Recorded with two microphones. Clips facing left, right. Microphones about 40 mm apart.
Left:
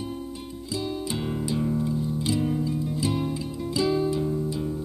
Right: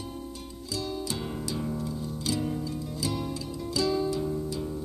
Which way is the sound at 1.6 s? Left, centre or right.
Centre.